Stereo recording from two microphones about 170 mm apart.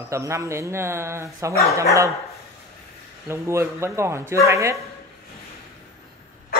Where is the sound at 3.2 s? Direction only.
15° right (ahead or behind).